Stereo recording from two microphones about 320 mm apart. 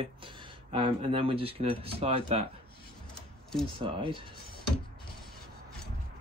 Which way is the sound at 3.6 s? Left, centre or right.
Centre.